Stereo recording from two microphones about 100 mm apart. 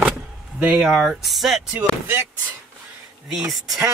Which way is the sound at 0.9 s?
Centre (ahead or behind).